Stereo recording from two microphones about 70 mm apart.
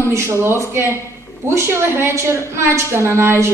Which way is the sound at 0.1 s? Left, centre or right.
Right.